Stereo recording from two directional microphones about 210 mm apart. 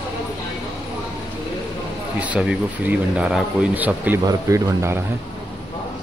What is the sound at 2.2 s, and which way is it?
A man's voice, 5° right (ahead or behind).